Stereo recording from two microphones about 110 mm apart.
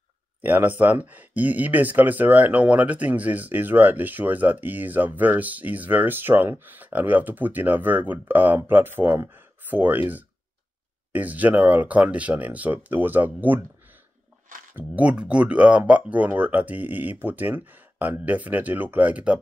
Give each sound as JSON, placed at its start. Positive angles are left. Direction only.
{"t": 0.4, "sound": "speech", "side_deg": -15}
{"t": 14.8, "sound": "speech", "side_deg": -10}